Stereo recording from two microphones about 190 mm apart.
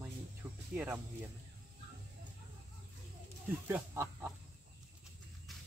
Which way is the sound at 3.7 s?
10° right (ahead or behind).